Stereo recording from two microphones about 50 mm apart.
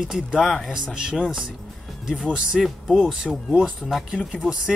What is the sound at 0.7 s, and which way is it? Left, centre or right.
Speech, centre.